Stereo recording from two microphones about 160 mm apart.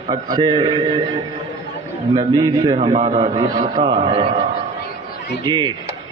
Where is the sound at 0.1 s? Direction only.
25° right (ahead or behind).